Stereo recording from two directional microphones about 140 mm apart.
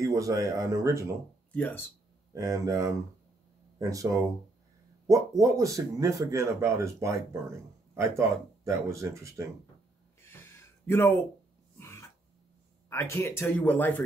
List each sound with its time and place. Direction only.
0.0 s speech: 25° right (ahead or behind)
1.5 s speech: 10° left (ahead or behind)
2.3 s speech: 20° right (ahead or behind)
10.2 s a sound: 20° left (ahead or behind)
11.8 s throat clearing: 20° left (ahead or behind)
12.9 s speech: 20° left (ahead or behind)